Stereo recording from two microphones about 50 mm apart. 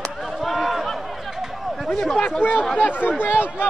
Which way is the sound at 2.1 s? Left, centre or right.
Left.